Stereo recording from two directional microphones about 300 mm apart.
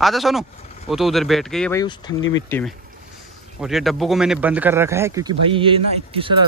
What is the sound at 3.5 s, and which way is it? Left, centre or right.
Speech, centre.